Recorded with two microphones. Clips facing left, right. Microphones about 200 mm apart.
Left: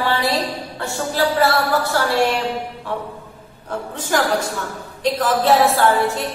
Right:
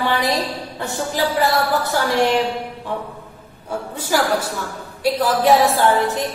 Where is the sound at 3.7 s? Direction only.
10° right (ahead or behind).